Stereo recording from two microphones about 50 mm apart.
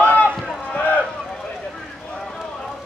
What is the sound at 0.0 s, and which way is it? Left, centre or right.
Run, left.